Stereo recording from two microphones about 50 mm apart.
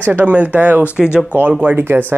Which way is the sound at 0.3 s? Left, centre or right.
Right.